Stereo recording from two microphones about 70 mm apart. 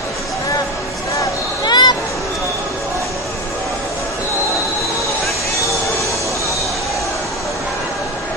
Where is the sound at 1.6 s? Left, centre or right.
Left.